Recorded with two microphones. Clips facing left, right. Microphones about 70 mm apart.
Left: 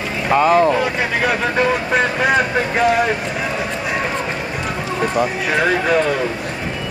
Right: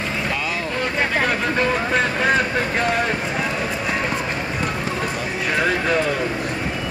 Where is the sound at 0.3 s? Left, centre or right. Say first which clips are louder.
Left 12 dB; left.